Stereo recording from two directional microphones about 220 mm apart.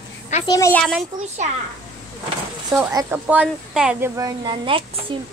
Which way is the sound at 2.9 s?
10° right (ahead or behind).